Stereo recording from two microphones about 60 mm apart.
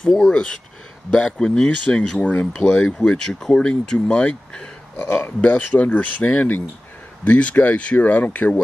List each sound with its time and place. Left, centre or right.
0.0 s speech: centre; by 8.5 s left